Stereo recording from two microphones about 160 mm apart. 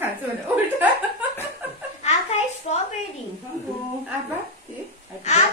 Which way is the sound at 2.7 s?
40° left (ahead or behind).